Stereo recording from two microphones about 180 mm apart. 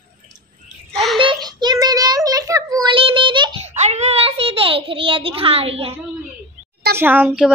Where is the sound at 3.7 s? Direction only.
40° right (ahead or behind).